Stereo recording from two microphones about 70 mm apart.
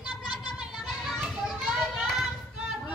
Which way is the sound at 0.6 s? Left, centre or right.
Centre.